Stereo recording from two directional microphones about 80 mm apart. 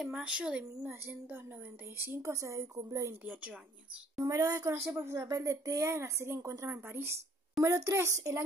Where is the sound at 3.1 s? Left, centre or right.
Centre.